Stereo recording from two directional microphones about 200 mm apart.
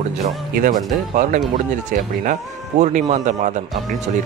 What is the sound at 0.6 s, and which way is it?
Speech, 45° right (ahead or behind).